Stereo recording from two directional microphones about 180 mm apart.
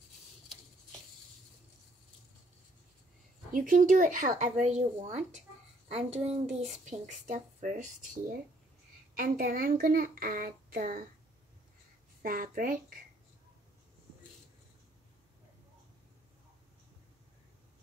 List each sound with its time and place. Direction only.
3.5 s a child's voice: 50° right (ahead or behind)
12.2 s a child's voice: 50° right (ahead or behind)